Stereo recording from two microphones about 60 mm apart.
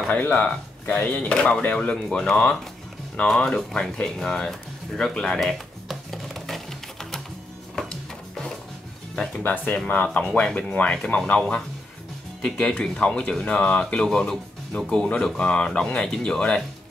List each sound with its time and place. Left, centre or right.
0.1 s speech: left
5.4 s music: centre
9.4 s speech: left
10.1 s speech: centre